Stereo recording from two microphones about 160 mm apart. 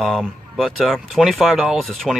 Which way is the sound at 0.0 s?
Centre (ahead or behind).